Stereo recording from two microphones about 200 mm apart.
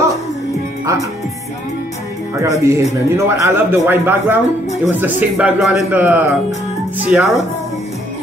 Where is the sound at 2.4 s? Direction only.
15° right (ahead or behind).